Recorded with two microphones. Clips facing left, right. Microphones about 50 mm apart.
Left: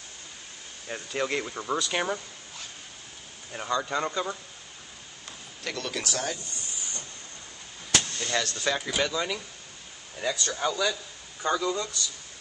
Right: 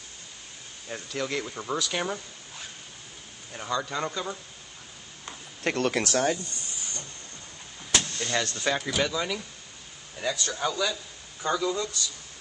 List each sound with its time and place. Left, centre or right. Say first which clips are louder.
0.8 s a man's voice: left 2 dB; centre
1.6 s a man's voice: left 1 dB; centre
3.5 s a man's voice: left 2 dB; centre
5.6 s speech: right 7 dB; right
7.9 s vehicle: even; centre
8.5 s a man's voice: right 1 dB; centre